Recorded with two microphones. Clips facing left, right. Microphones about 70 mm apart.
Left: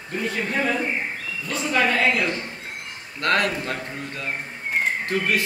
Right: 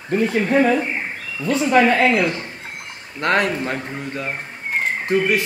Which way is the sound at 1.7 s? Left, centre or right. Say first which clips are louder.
Right 5 dB; right.